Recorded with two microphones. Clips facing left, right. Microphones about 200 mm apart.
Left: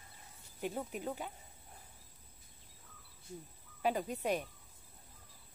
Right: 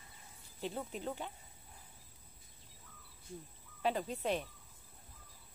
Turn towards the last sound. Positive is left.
turn(degrees=15)  # may be behind; listen again after turning